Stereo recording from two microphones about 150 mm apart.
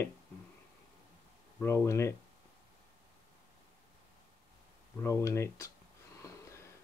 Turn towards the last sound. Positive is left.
turn(degrees=20)  # may be behind; listen again after turning